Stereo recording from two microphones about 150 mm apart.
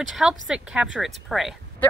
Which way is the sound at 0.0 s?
5° right (ahead or behind).